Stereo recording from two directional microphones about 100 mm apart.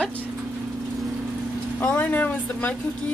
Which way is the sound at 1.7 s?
15° left (ahead or behind).